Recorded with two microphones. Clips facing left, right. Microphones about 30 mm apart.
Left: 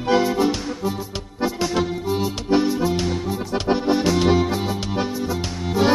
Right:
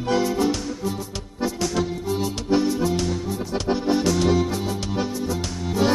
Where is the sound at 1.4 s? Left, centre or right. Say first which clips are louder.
Left 2 dB; left.